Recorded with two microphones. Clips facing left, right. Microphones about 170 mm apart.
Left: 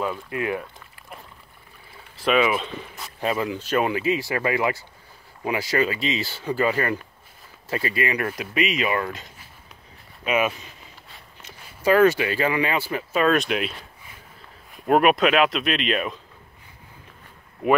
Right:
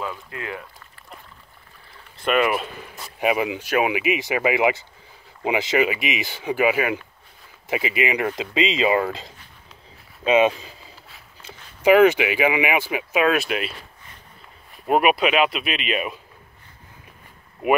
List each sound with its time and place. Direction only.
0.0 s speech: 15° left (ahead or behind)
2.1 s speech: centre (ahead or behind); by 10.7 s 25° right (ahead or behind)
11.8 s speech: 20° right (ahead or behind)